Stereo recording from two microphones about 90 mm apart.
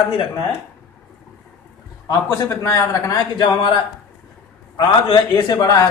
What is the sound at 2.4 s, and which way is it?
Speech, 25° left (ahead or behind).